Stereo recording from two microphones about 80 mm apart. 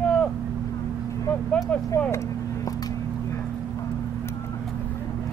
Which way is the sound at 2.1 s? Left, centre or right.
Left.